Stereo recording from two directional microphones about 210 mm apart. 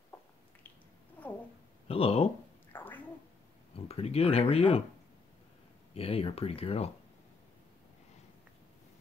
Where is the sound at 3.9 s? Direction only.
30° left (ahead or behind).